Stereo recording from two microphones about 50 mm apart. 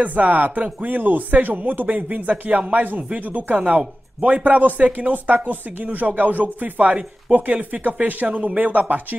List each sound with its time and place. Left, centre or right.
0.0 s speech: right